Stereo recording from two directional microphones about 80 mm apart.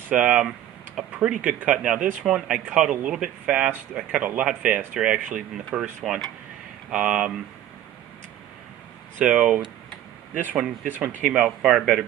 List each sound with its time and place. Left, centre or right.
0.1 s speech: centre
9.2 s speech: centre
11.2 s speech: centre